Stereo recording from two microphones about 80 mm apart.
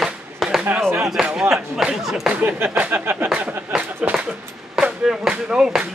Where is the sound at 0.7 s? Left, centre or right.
Right.